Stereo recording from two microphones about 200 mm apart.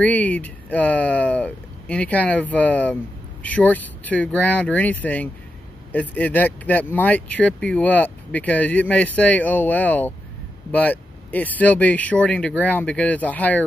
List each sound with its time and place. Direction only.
0.0 s speech: 5° left (ahead or behind)